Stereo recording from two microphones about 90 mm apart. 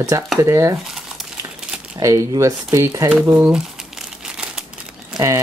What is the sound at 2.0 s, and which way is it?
Speech, 40° right (ahead or behind).